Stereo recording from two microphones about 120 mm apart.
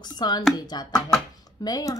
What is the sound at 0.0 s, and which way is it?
Speech, 35° left (ahead or behind).